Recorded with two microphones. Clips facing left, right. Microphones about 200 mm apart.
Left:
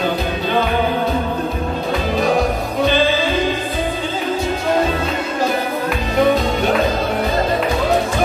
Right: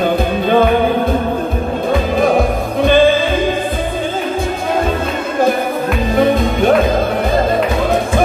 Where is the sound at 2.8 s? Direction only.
50° right (ahead or behind).